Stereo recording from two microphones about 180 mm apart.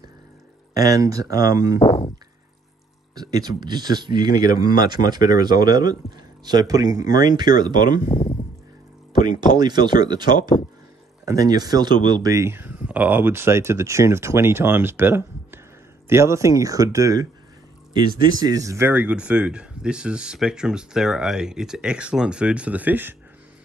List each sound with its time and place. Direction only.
0.7 s speech: 20° right (ahead or behind)
1.8 s a sound: 30° left (ahead or behind)
3.2 s speech: 20° right (ahead or behind)
4.3 s speech: 50° left (ahead or behind)
5.1 s speech: 25° right (ahead or behind)
9.5 s speech: 25° right (ahead or behind)